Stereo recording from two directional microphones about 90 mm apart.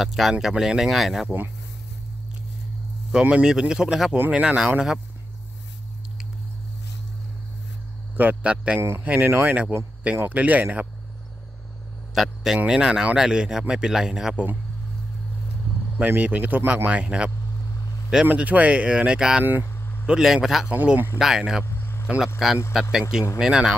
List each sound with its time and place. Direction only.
0.0 s speech: centre (ahead or behind)
3.1 s a man's voice: 10° right (ahead or behind)
8.2 s a man's voice: 15° right (ahead or behind)
12.2 s a man's voice: centre (ahead or behind)
16.0 s a man's voice: 15° right (ahead or behind)
19.6 s vehicle: 25° left (ahead or behind)
20.1 s speech: 5° right (ahead or behind)
20.7 s a man's voice: 20° right (ahead or behind)
21.2 s speech: 5° right (ahead or behind)
21.6 s vehicle: 25° left (ahead or behind)
22.7 s a man's voice: 5° right (ahead or behind)